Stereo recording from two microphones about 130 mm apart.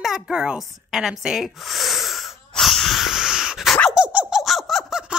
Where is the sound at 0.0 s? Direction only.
5° right (ahead or behind).